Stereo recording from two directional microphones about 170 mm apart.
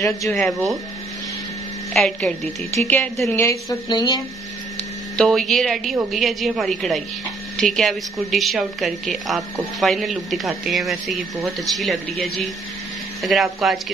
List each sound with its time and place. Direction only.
0.3 s a woman's voice: centre (ahead or behind)
2.0 s a woman's voice: 5° left (ahead or behind)
3.4 s a woman's voice: 20° left (ahead or behind)
5.1 s a woman's voice: centre (ahead or behind)